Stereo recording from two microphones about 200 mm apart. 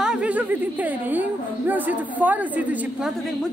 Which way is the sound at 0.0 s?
5° right (ahead or behind).